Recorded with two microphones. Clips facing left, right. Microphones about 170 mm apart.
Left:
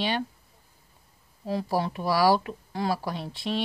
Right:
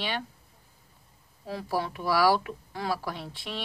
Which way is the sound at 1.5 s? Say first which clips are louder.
Left 4 dB; 30° left (ahead or behind).